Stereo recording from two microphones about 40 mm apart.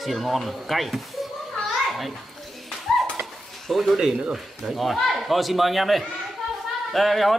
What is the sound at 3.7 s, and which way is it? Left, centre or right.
A man's voice, centre.